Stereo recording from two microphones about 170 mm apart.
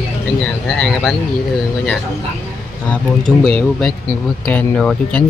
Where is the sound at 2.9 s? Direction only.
5° left (ahead or behind).